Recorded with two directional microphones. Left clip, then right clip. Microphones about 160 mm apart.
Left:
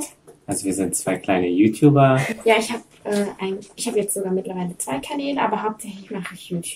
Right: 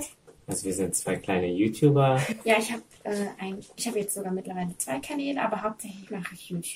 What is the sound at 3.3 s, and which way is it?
A woman's voice, 20° right (ahead or behind).